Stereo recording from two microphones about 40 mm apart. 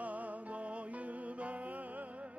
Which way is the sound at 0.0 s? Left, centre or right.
Right.